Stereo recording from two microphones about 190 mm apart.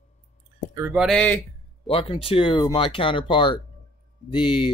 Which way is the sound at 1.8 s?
30° left (ahead or behind).